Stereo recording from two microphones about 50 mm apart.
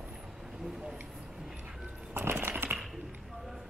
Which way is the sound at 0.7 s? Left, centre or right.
Centre.